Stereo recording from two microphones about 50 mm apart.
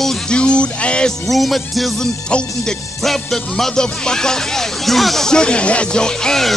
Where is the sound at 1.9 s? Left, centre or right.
Centre.